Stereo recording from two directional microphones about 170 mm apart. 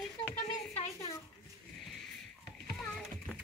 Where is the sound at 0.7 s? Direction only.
35° left (ahead or behind).